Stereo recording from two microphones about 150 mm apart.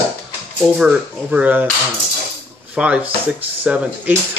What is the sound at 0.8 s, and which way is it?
Speech, 10° right (ahead or behind).